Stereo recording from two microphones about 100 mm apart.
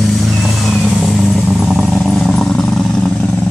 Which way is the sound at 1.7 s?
Centre (ahead or behind).